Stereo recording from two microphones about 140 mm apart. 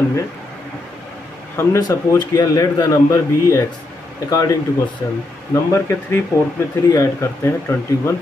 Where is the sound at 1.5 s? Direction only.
20° left (ahead or behind).